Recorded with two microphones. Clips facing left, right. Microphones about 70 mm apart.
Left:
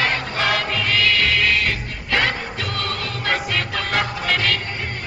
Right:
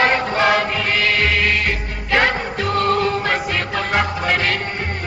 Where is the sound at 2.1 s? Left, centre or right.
Right.